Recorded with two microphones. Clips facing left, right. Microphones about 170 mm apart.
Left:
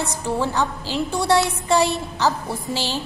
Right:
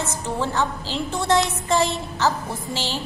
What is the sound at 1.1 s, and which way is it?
Speech, 20° right (ahead or behind).